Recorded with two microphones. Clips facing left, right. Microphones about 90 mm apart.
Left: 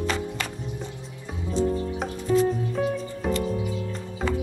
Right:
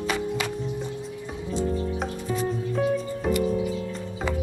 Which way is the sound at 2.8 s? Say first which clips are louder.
Right 2 dB; centre (ahead or behind).